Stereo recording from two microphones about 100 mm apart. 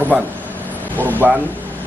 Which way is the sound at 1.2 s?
20° right (ahead or behind).